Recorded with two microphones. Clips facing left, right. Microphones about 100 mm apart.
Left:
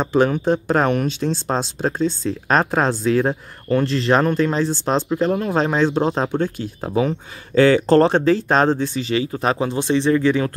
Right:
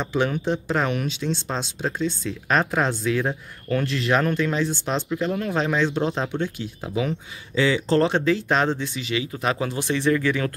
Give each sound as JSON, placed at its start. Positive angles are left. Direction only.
{"t": 0.0, "sound": "speech", "side_deg": 40}